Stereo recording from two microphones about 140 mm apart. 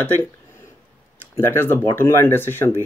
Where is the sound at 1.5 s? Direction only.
15° left (ahead or behind).